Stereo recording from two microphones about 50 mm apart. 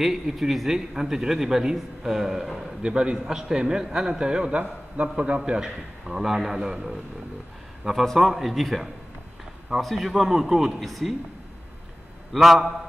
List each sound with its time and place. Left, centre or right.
0.0 s a man's voice: centre
2.8 s a man's voice: centre
5.5 s a man's voice: centre
12.4 s speech: centre